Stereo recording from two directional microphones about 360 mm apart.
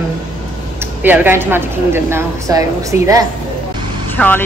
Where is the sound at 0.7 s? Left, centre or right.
Centre.